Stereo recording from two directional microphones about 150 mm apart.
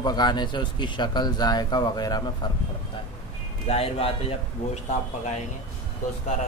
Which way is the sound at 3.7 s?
40° left (ahead or behind).